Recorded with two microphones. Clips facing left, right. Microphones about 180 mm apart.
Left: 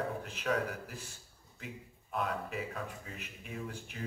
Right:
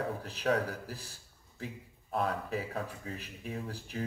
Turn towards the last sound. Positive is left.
turn(degrees=-35)  # may be behind; listen again after turning